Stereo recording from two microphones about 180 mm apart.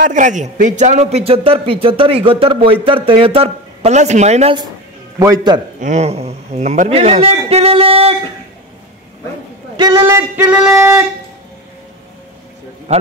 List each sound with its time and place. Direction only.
0.0 s a man's voice: 45° right (ahead or behind)
5.2 s a man's voice: 25° right (ahead or behind)
5.8 s a man's voice: 40° right (ahead or behind)
9.8 s a sound: 20° right (ahead or behind)